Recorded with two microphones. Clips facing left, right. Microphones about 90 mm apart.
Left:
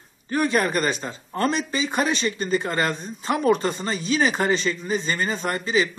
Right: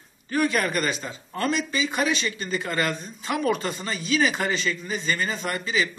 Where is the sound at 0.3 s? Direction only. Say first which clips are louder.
Left 2 dB; 30° left (ahead or behind).